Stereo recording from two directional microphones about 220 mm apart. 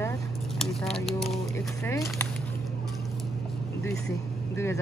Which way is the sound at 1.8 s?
15° left (ahead or behind).